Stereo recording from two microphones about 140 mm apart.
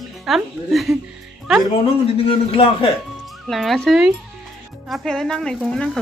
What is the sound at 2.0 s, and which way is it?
Speech, 40° left (ahead or behind).